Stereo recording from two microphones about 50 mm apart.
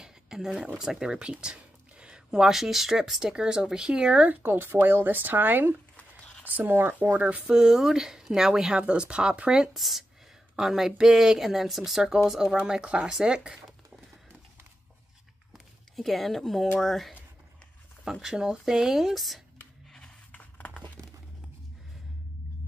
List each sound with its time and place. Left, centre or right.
0.0 s a sound: centre
0.7 s speech: centre
4.3 s speech: right
7.2 s speech: right
7.4 s speech: centre
8.8 s speech: right
9.8 s speech: centre
15.5 s a sound: centre
16.8 s speech: centre
18.2 s speech: centre
20.2 s a sound: left